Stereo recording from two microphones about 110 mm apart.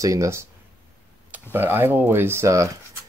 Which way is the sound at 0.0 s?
30° right (ahead or behind).